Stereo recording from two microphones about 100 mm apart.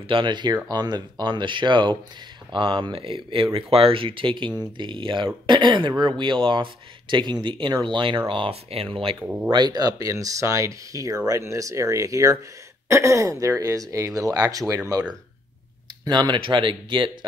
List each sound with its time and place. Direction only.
0.1 s speech: 50° right (ahead or behind)
8.3 s speech: 65° right (ahead or behind)
9.5 s speech: 45° right (ahead or behind)
16.1 s speech: 50° right (ahead or behind)